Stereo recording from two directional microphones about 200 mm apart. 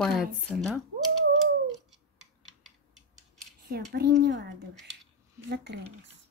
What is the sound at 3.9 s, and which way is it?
Speech, 55° right (ahead or behind).